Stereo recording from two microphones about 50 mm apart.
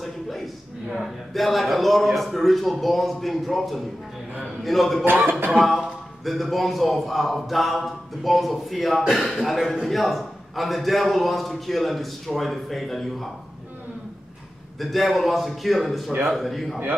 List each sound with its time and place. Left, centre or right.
0.0 s a man's voice: centre
5.0 s music: right
5.5 s a man's voice: centre
14.8 s a man's voice: centre